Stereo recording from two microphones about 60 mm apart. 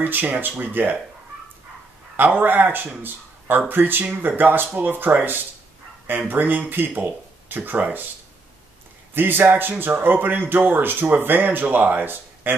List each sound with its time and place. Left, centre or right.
0.0 s speech: right
2.1 s speech: right
9.1 s speech: right